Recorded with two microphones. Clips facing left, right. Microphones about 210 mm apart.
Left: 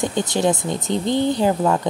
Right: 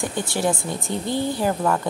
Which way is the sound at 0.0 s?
20° left (ahead or behind).